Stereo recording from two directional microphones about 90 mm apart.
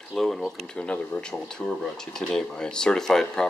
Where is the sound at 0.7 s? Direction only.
10° left (ahead or behind).